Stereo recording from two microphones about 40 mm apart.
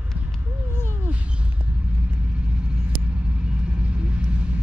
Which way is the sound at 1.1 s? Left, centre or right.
Right.